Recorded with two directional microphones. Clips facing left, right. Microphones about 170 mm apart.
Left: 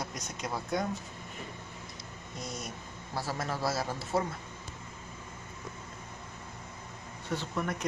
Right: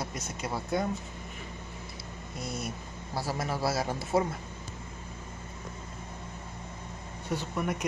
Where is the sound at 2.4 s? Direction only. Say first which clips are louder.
Right 4 dB; 5° right (ahead or behind).